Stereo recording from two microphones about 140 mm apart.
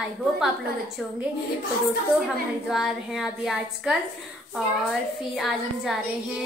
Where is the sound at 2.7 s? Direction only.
Centre (ahead or behind).